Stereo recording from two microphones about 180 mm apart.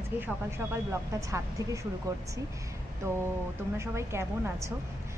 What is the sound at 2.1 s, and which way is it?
A woman's voice, 20° right (ahead or behind).